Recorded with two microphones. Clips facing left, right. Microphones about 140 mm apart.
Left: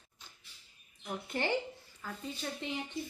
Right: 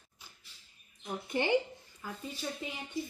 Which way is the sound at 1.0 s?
15° right (ahead or behind).